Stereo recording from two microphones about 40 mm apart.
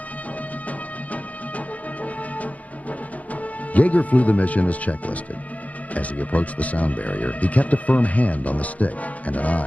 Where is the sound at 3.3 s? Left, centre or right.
Left.